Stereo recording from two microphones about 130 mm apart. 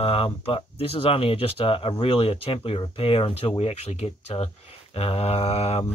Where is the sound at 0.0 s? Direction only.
45° left (ahead or behind).